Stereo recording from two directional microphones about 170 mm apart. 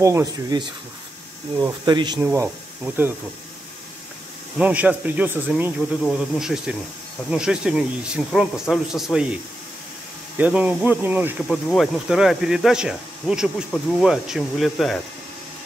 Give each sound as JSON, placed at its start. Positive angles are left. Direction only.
{"t": 0.0, "sound": "speech", "side_deg": -20}
{"t": 2.1, "sound": "speech", "side_deg": -15}
{"t": 4.6, "sound": "speech", "side_deg": -10}
{"t": 10.3, "sound": "speech", "side_deg": -10}
{"t": 11.4, "sound": "speech", "side_deg": 0}